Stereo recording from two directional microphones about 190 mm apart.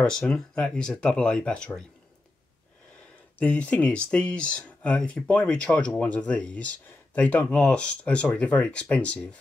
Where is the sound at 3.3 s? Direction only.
5° left (ahead or behind).